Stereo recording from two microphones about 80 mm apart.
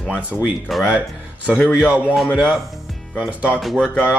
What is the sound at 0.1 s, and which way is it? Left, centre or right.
Speech, centre.